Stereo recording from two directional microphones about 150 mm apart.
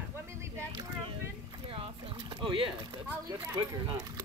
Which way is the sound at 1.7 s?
40° right (ahead or behind).